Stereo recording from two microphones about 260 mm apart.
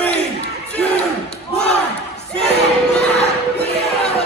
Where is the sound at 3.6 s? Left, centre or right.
Left.